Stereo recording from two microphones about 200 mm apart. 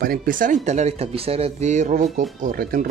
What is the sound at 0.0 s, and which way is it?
Speech, 45° right (ahead or behind).